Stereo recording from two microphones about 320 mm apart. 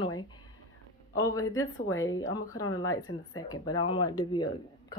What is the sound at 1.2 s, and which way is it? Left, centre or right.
Speech, centre.